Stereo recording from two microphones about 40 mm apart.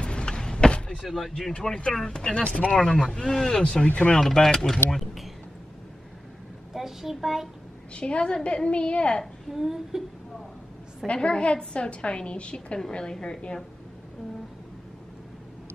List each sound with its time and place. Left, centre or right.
0.0 s vehicle: left
1.0 s speech: centre
2.5 s speech: left
2.9 s speech: centre; by 4.1 s left
4.2 s speech: centre
4.9 s speech: centre
6.7 s a woman's voice: centre
7.9 s a woman's voice: left
9.5 s speech: centre
11.1 s a woman's voice: left